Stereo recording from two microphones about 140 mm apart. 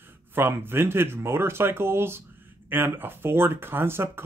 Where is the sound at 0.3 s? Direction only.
15° right (ahead or behind).